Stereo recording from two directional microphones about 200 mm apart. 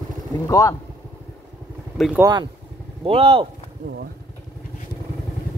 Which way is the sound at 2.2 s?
20° right (ahead or behind).